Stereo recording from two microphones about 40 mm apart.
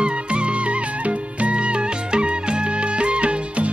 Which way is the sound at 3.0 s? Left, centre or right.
Right.